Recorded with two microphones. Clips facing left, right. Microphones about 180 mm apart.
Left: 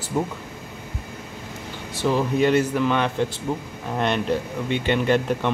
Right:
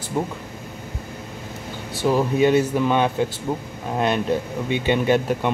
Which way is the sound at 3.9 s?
5° right (ahead or behind).